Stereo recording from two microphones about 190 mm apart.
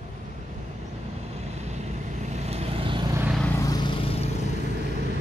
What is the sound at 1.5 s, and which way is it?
Vehicle, 35° right (ahead or behind).